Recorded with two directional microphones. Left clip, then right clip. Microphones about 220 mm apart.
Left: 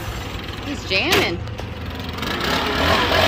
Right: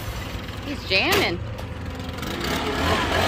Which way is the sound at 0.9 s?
5° right (ahead or behind).